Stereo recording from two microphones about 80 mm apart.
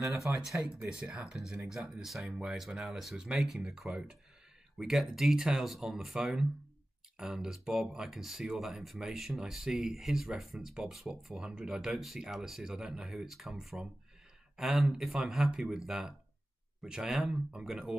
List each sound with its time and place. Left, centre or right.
0.0 s speech: right
0.4 s speech: centre